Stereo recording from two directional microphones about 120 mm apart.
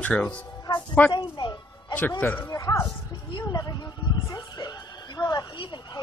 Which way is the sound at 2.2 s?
15° left (ahead or behind).